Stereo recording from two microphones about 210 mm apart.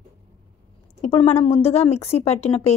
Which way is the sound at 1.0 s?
30° left (ahead or behind).